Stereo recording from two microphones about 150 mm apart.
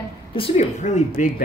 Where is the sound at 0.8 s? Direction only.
55° left (ahead or behind).